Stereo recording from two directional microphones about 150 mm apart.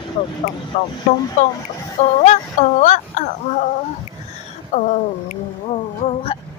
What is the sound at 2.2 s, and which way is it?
Speech, 50° left (ahead or behind).